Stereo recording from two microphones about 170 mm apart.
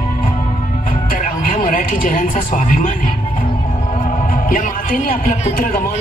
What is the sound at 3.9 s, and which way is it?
Music, 50° left (ahead or behind).